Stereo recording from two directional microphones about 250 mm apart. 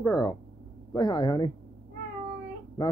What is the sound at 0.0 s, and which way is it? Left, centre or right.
Speech, centre.